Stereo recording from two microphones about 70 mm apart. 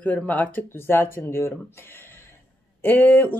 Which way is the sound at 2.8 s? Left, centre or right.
Left.